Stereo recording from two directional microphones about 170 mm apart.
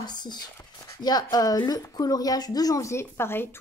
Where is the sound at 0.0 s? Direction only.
25° left (ahead or behind).